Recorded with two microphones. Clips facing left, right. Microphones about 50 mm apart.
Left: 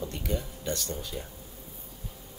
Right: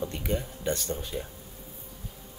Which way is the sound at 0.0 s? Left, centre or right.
Right.